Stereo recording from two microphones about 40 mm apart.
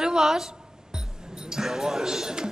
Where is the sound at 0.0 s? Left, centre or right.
Centre.